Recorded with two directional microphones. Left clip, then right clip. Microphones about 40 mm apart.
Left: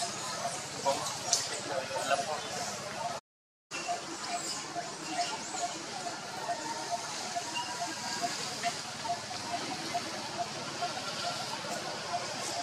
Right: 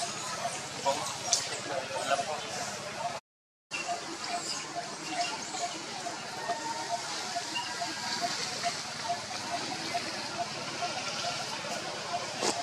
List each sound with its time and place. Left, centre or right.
0.9 s speech: centre
1.3 s a sound: right
1.7 s speech: centre